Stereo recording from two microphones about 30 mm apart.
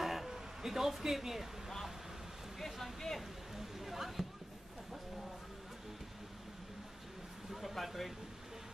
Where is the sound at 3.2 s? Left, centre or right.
Centre.